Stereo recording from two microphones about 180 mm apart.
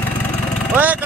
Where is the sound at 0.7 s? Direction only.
10° right (ahead or behind).